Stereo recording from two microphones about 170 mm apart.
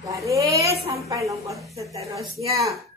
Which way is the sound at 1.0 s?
20° right (ahead or behind).